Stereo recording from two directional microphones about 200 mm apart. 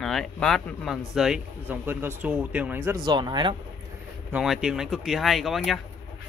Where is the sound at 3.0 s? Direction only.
20° right (ahead or behind).